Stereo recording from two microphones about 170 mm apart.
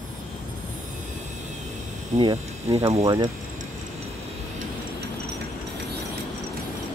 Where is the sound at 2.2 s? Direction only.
35° right (ahead or behind).